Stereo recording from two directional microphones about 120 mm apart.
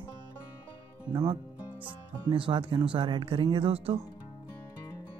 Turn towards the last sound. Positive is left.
turn(degrees=-50)  # may be behind; listen again after turning